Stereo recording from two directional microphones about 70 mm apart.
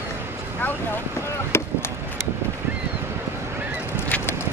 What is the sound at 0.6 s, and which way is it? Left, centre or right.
Boat, left.